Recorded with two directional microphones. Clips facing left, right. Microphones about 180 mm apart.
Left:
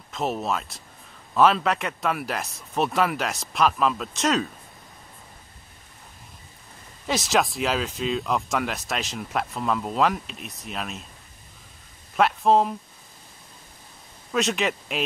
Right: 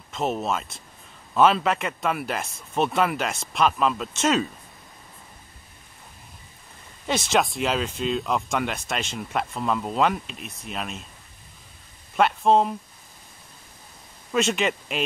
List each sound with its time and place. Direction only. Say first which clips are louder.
0.1 s speech: right 1 dB; centre (ahead or behind)
7.1 s speech: even; centre (ahead or behind)
12.2 s speech: even; centre (ahead or behind)
14.3 s speech: right 1 dB; centre (ahead or behind)